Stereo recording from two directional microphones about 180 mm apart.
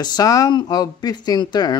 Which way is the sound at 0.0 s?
20° left (ahead or behind).